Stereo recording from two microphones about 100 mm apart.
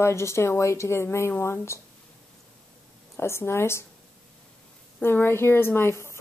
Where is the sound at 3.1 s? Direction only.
25° left (ahead or behind).